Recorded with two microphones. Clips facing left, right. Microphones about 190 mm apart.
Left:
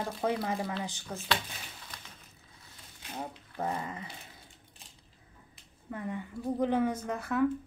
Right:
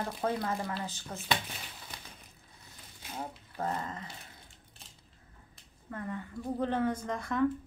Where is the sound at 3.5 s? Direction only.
15° left (ahead or behind).